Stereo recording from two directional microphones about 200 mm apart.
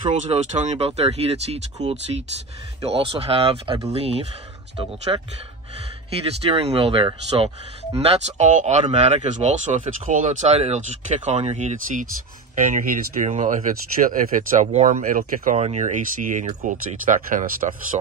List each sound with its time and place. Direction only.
0.2 s speech: 35° right (ahead or behind)
6.4 s speech: 30° right (ahead or behind)